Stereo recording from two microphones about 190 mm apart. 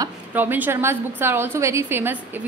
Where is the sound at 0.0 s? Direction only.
10° right (ahead or behind).